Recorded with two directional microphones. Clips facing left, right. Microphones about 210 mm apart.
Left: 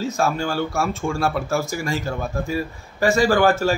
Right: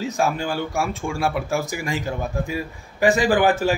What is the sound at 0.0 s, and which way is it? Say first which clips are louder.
Speech: left 1 dB; 15° right (ahead or behind).